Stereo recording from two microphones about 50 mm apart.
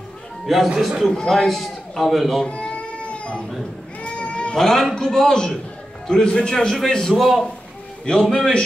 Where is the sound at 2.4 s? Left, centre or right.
Centre.